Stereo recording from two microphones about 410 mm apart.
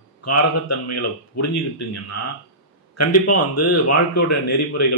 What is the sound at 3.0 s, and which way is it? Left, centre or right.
A man's voice, left.